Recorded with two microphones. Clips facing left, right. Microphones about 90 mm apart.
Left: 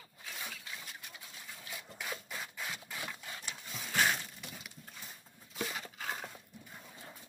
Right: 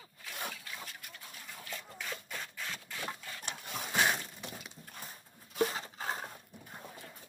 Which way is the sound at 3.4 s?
60° right (ahead or behind).